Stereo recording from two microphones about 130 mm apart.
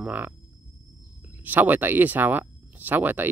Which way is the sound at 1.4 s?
15° right (ahead or behind).